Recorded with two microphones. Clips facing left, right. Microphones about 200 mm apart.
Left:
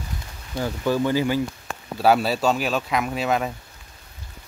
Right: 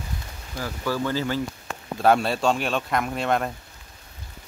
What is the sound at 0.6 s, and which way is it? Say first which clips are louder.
Speech: left 5 dB; 20° left (ahead or behind).